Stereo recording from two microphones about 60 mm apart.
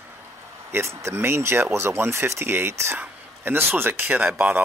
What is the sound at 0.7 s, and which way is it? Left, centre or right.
Speech, right.